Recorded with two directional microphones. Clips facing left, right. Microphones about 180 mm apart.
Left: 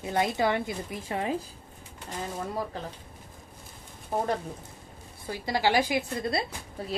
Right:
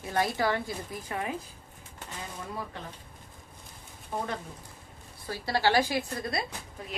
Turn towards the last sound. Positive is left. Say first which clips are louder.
# left 3 dB
turn(degrees=30)  # may be behind; listen again after turning